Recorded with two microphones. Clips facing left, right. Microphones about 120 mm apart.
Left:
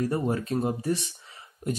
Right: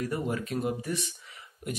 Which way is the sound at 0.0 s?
35° left (ahead or behind).